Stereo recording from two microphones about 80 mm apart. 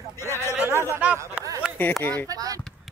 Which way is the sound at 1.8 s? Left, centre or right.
Left.